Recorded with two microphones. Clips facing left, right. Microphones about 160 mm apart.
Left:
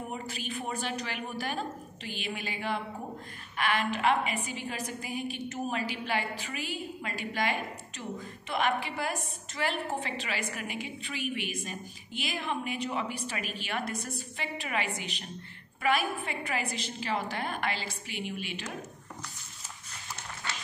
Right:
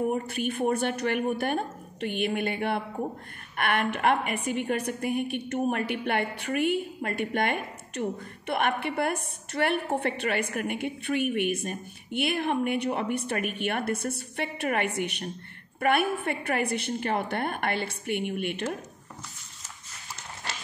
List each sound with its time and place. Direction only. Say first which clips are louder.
0.1 s a woman's voice: right 8 dB; 55° right (ahead or behind)